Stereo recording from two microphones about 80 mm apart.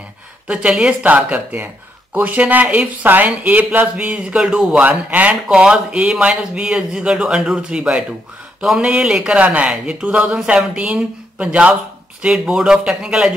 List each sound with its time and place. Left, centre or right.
0.5 s speech: centre